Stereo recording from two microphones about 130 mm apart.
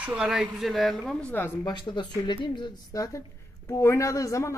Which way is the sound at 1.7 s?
35° left (ahead or behind).